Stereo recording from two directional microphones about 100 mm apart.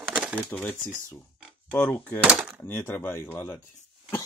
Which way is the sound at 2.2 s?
10° right (ahead or behind).